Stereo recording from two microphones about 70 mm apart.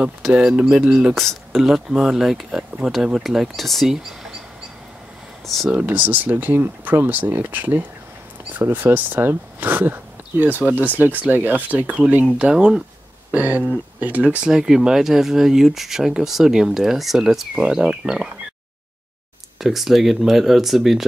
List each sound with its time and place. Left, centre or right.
0.6 s speech: centre
1.1 s speech: centre
5.7 s speech: right
13.3 s speech: right
14.5 s speech: centre
19.6 s speech: centre